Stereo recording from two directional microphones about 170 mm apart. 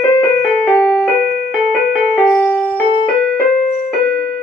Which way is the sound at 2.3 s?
10° left (ahead or behind).